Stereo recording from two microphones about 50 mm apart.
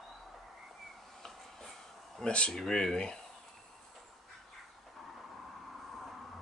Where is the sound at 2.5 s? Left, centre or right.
Centre.